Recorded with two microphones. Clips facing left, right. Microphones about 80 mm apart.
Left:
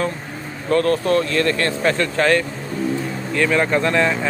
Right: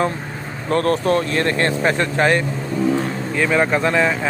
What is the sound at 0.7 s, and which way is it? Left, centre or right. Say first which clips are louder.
Speech: even; right.